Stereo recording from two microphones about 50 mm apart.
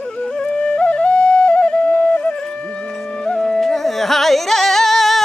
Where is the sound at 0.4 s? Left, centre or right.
Left.